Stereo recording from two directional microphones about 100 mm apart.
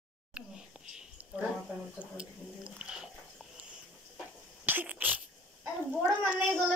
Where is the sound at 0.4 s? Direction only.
10° right (ahead or behind).